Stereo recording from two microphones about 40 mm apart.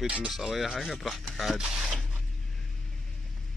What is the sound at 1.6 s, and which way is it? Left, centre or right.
Speech, centre.